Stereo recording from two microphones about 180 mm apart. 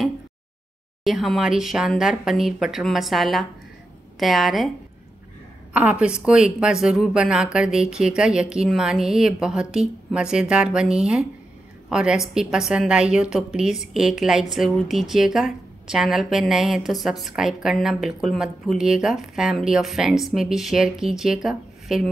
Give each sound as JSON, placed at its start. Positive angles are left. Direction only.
{"t": 1.0, "sound": "a woman's voice", "side_deg": 0}
{"t": 5.7, "sound": "a woman's voice", "side_deg": -5}